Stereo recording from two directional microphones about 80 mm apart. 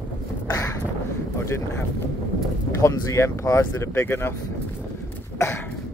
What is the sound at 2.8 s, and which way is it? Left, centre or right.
Speech, left.